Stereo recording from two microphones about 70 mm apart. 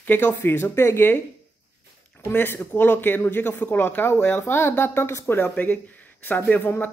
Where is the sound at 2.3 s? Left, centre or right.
Left.